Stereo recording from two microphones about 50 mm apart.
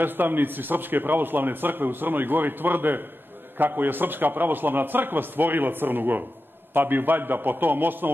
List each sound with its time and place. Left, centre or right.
0.0 s a man's voice: right